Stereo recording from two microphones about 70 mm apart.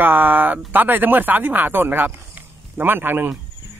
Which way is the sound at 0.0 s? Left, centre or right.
Right.